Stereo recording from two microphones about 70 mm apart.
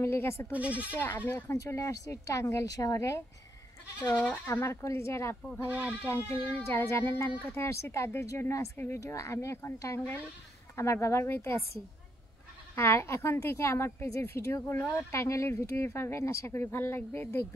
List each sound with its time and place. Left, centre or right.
0.0 s speech: left
0.5 s speech: centre
0.9 s speech: left
1.5 s speech: left
2.6 s speech: left
4.5 s speech: left
5.7 s speech: centre
6.0 s speech: left
9.9 s speech: left
10.8 s speech: left